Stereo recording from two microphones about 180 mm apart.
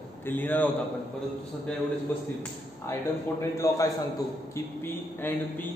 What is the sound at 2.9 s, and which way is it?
A man's voice, 15° left (ahead or behind).